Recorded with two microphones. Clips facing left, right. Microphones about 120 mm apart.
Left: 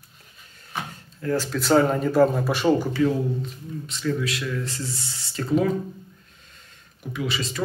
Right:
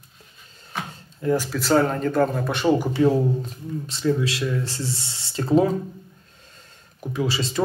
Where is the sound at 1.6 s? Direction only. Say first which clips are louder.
Left 2 dB; centre (ahead or behind).